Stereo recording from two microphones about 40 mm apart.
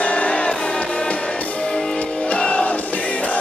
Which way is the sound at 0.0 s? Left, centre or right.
Left.